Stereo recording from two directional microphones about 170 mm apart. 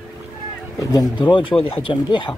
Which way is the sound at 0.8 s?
20° left (ahead or behind).